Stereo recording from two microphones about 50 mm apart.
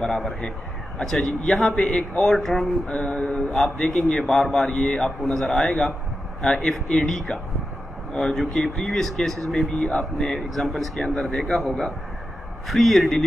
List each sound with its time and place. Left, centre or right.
0.0 s speech: centre
1.8 s speech: centre
2.3 s speech: centre
2.9 s speech: left
5.2 s speech: centre
9.7 s speech: left
10.6 s speech: centre